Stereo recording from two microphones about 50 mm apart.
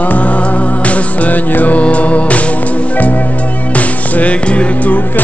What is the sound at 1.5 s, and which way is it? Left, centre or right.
Music, left.